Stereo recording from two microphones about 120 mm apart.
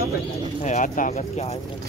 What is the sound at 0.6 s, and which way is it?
Speech, 90° left.